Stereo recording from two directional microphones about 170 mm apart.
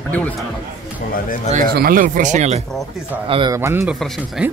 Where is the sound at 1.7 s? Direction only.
60° right (ahead or behind); by 2.6 s 40° right (ahead or behind).